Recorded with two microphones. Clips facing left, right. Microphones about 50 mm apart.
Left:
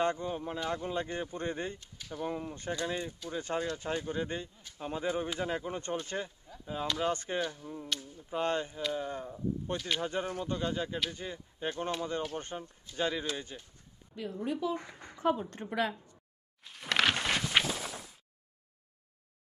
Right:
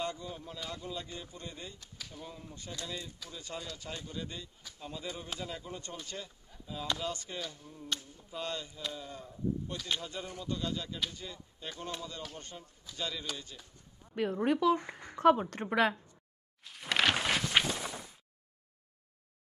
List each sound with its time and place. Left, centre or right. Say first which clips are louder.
0.0 s speech: left 7 dB; left
14.1 s speech: right 5 dB; right
15.3 s speech: right 3 dB; right
16.6 s a sound: left 1 dB; centre